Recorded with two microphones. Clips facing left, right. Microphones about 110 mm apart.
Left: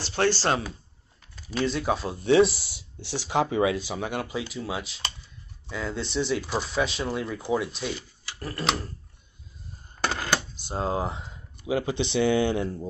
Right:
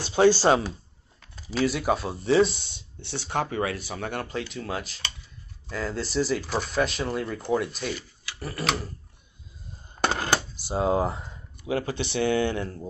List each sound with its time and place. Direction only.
0.1 s speech: 15° right (ahead or behind)
10.0 s a sound: 45° right (ahead or behind)
10.7 s speech: 5° right (ahead or behind)
11.6 s speech: 20° left (ahead or behind)